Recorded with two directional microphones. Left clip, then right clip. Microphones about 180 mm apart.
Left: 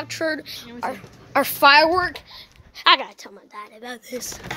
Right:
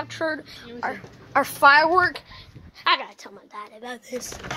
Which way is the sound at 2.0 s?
5° left (ahead or behind).